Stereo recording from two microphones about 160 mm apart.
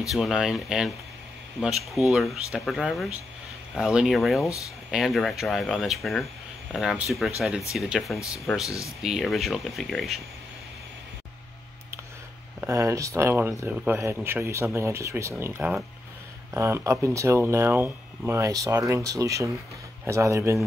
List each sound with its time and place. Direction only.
0.1 s speech: centre (ahead or behind)
12.5 s speech: 15° right (ahead or behind)